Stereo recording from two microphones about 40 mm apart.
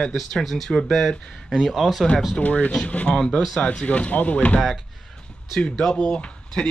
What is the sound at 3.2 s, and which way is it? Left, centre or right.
Speech, centre.